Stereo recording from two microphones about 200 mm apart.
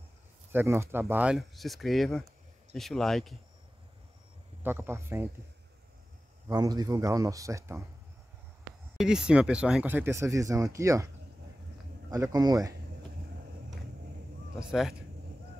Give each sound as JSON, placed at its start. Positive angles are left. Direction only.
{"t": 0.5, "sound": "speech", "side_deg": -10}
{"t": 4.6, "sound": "speech", "side_deg": -10}
{"t": 6.4, "sound": "speech", "side_deg": -20}
{"t": 8.9, "sound": "speech", "side_deg": -5}
{"t": 12.1, "sound": "speech", "side_deg": -20}
{"t": 14.6, "sound": "speech", "side_deg": -5}